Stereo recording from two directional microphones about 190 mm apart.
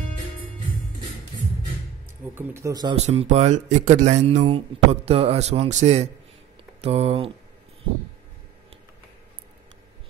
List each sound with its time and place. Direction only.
2.3 s speech: 10° right (ahead or behind)
3.1 s speech: 35° right (ahead or behind)